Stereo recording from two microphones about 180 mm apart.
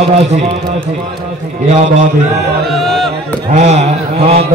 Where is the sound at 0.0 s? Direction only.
35° right (ahead or behind).